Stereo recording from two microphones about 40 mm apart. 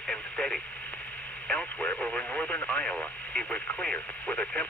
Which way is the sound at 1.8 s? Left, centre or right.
Left.